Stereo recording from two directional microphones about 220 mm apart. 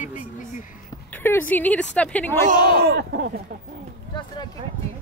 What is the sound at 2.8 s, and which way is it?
Speech, 50° right (ahead or behind).